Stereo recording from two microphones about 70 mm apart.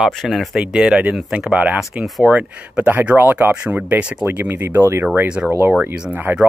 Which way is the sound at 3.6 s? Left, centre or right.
Centre.